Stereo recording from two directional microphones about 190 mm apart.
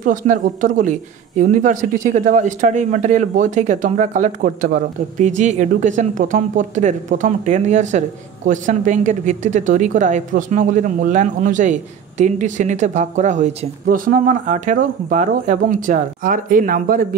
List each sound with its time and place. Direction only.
0.0 s speech: 45° right (ahead or behind)